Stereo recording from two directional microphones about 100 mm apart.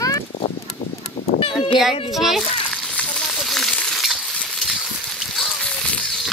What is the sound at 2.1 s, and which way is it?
Frying, centre (ahead or behind).